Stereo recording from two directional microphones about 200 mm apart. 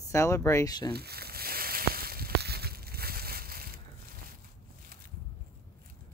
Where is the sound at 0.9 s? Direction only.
50° right (ahead or behind).